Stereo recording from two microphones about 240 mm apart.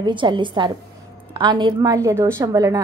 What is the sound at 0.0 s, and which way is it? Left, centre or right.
A woman's voice, centre.